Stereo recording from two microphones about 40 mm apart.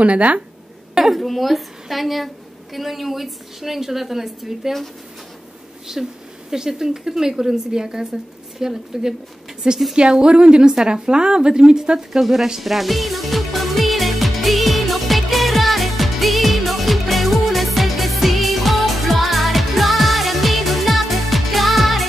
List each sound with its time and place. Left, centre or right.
0.0 s speech: right
0.9 s a sound: centre
1.2 s a woman's voice: centre
5.9 s a woman's voice: centre
12.1 s a woman's voice: centre
12.4 s music: centre